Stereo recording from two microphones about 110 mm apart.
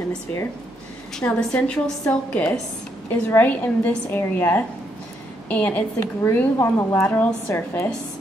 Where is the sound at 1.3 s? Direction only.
10° left (ahead or behind).